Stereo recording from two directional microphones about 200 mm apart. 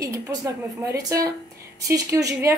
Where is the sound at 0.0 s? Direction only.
15° right (ahead or behind).